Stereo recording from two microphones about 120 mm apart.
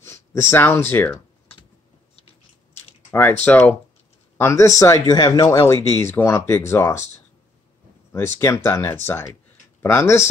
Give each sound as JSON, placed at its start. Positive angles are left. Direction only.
{"t": 0.0, "sound": "speech", "side_deg": 25}
{"t": 3.1, "sound": "speech", "side_deg": 15}
{"t": 8.1, "sound": "speech", "side_deg": 25}